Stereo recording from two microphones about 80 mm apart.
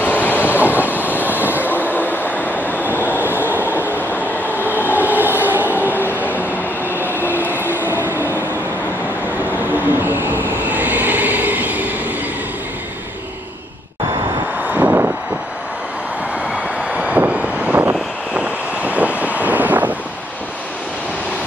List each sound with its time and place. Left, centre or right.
0.0 s train: left
0.7 s train: right
1.8 s train: left
2.6 s vehicle: left
3.1 s train: right
4.1 s train: left
5.0 s train: right
5.9 s train: left
7.8 s train: right
10.0 s train: right
14.7 s vehicle: right
16.9 s vehicle: centre